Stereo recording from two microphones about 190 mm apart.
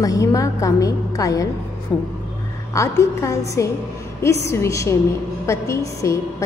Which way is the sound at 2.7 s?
15° left (ahead or behind).